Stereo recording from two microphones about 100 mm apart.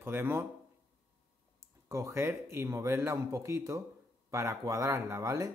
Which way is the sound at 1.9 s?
30° right (ahead or behind).